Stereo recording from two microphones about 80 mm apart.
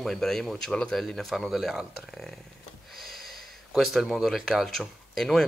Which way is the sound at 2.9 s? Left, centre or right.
Centre.